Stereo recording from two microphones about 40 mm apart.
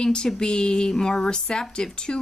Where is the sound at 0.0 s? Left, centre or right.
Left.